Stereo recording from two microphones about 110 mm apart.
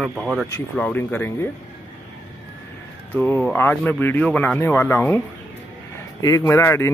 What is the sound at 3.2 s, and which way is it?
Speech, 15° left (ahead or behind).